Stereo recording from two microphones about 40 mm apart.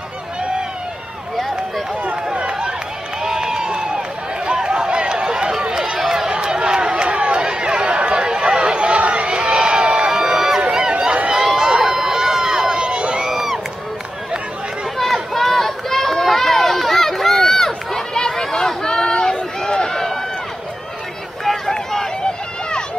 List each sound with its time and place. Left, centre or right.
2.3 s run: right
3.3 s run: centre; by 9.4 s right
9.5 s crowd: right
10.1 s a sound: centre
10.7 s run: centre
11.3 s run: centre
11.6 s crowd: centre
13.2 s crowd: centre
15.0 s run: centre
21.7 s run: centre